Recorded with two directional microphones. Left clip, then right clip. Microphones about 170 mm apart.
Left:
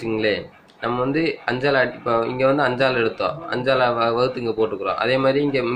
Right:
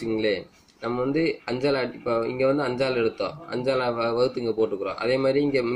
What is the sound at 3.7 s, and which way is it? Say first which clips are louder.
Speech: left 6 dB; 25° right (ahead or behind).